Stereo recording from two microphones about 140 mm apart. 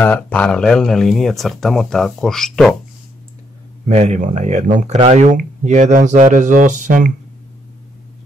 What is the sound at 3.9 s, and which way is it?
Speech, 55° right (ahead or behind).